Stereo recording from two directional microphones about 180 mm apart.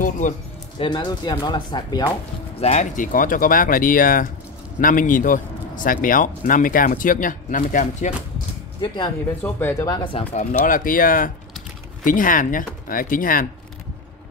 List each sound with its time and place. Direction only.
0.2 s speech: 45° left (ahead or behind)
0.7 s speech: 25° left (ahead or behind)
2.6 s speech: 40° left (ahead or behind)
8.8 s speech: 25° left (ahead or behind)
9.4 s speech: 10° left (ahead or behind)
10.6 s speech: 50° left (ahead or behind)